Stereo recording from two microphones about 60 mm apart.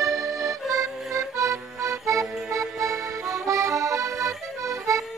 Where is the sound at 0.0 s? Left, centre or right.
Right.